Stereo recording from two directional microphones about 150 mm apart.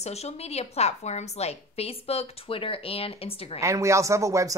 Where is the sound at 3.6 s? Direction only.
20° right (ahead or behind).